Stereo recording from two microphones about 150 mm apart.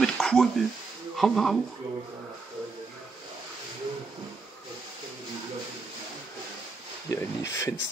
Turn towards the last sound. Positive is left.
turn(degrees=20)  # may be behind; listen again after turning